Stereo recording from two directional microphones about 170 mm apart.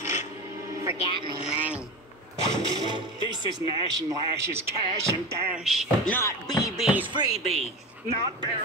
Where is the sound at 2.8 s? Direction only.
25° right (ahead or behind).